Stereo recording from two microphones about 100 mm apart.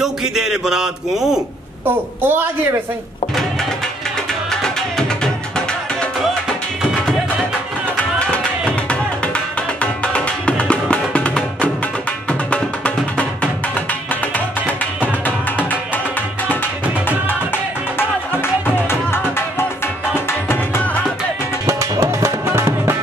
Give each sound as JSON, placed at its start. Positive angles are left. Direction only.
{"t": 0.0, "sound": "speech", "side_deg": -5}
{"t": 1.9, "sound": "a woman's voice", "side_deg": -20}
{"t": 4.5, "sound": "music", "side_deg": 5}
{"t": 8.2, "sound": "music", "side_deg": 10}
{"t": 10.0, "sound": "music", "side_deg": 10}
{"t": 15.0, "sound": "music", "side_deg": 15}
{"t": 18.9, "sound": "music", "side_deg": 25}
{"t": 20.4, "sound": "music", "side_deg": 20}
{"t": 21.6, "sound": "music", "side_deg": -30}